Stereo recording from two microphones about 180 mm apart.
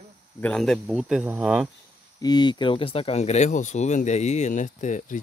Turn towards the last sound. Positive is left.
turn(degrees=45)  # may be behind; listen again after turning